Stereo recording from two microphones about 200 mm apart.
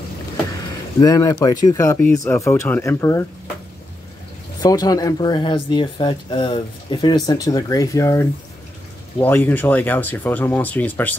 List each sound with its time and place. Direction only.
0.5 s speech: 15° left (ahead or behind)
4.6 s speech: 20° left (ahead or behind)